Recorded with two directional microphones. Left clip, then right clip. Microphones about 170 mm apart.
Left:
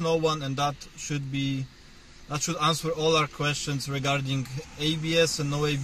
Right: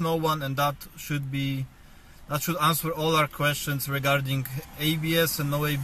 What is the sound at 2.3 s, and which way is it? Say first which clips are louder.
Speech: right 1 dB; 10° left (ahead or behind).